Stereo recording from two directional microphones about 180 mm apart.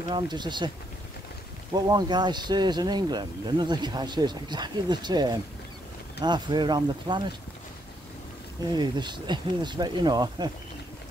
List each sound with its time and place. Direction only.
0.1 s speech: 25° right (ahead or behind)
1.7 s speech: 20° right (ahead or behind)
8.7 s speech: 25° right (ahead or behind)